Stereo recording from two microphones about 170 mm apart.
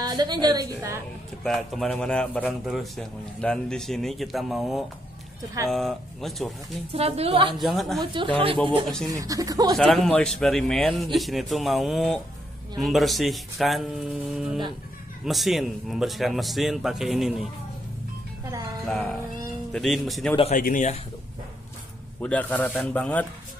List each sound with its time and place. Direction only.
0.0 s a woman's voice: 25° right (ahead or behind)
1.4 s speech: centre (ahead or behind)
6.9 s a woman's voice: 35° right (ahead or behind)
7.5 s speech: centre (ahead or behind)
8.0 s a woman's voice: 30° right (ahead or behind)
8.8 s speech: centre (ahead or behind)
9.1 s a woman's voice: 20° right (ahead or behind)
9.8 s speech: 5° left (ahead or behind)
18.9 s speech: 5° left (ahead or behind)
20.5 s a man's voice: 50° left (ahead or behind)
22.2 s speech: 10° left (ahead or behind)